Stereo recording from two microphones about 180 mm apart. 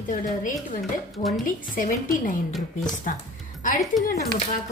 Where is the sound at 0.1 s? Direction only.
45° left (ahead or behind).